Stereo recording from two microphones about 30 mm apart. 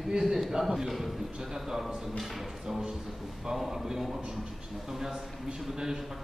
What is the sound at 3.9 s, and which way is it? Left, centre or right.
A man's voice, centre.